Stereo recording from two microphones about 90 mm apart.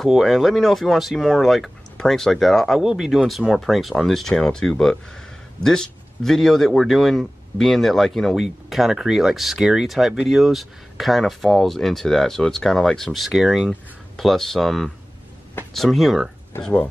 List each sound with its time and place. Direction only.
0.0 s speech: centre (ahead or behind)
16.5 s speech: 25° left (ahead or behind)